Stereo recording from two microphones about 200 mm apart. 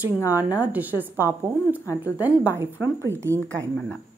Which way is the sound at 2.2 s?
10° right (ahead or behind).